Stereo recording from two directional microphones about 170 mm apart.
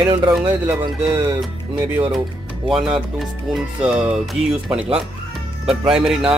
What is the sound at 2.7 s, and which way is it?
Speech, 5° right (ahead or behind).